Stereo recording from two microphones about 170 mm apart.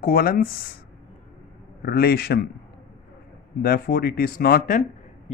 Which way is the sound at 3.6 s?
60° left (ahead or behind).